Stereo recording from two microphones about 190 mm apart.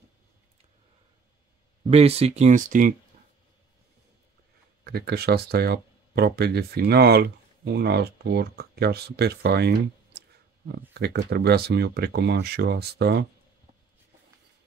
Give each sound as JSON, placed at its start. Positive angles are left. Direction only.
{"t": 1.9, "sound": "speech", "side_deg": -30}
{"t": 4.8, "sound": "speech", "side_deg": -55}